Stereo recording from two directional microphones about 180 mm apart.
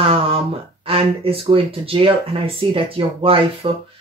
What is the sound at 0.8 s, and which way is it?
Speech, 30° right (ahead or behind).